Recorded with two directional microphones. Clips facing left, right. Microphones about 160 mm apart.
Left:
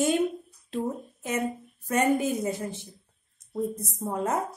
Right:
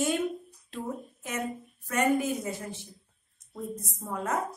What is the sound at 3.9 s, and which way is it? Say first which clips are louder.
Speech: left 2 dB; 25° left (ahead or behind).